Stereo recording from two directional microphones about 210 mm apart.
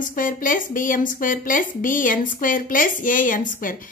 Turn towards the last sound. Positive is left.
turn(degrees=40)  # may be behind; listen again after turning